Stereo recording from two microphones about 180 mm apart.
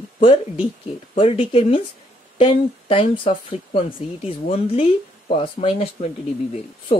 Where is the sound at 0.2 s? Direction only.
30° left (ahead or behind).